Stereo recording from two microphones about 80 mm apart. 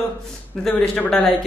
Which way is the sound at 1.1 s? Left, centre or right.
Centre.